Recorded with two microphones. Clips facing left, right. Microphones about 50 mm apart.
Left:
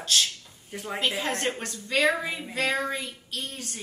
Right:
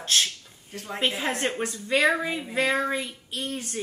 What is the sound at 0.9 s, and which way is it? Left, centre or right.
A woman's voice, centre.